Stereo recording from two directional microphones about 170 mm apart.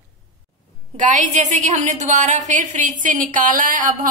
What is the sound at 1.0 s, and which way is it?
A woman's voice, 45° right (ahead or behind).